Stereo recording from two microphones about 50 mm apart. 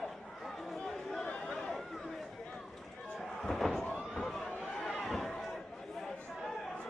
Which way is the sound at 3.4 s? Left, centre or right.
Centre.